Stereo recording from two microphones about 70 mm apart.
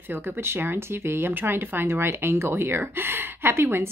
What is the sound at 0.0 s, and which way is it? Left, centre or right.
Speech, right.